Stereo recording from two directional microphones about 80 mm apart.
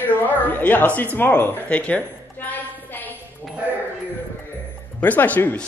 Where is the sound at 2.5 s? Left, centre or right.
Left.